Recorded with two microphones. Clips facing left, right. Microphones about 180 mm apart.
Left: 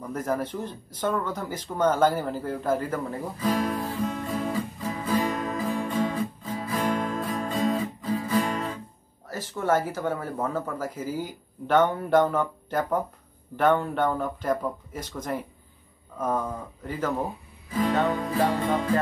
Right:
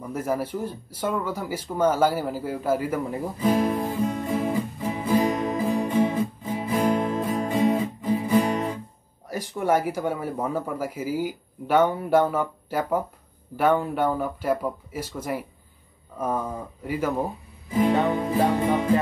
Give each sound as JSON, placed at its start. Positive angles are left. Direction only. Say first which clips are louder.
{"t": 0.0, "sound": "speech", "louder": "right 1 dB", "side_deg": -10}
{"t": 3.3, "sound": "speech", "louder": "right 4 dB", "side_deg": -20}
{"t": 3.9, "sound": "music", "louder": "right 4 dB", "side_deg": -20}
{"t": 9.3, "sound": "speech", "louder": "right 2 dB", "side_deg": -15}